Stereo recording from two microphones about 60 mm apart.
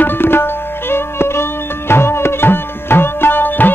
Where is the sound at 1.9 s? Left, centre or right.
Left.